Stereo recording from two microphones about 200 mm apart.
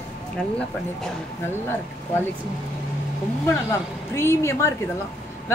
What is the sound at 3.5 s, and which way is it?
A woman's voice, 15° left (ahead or behind).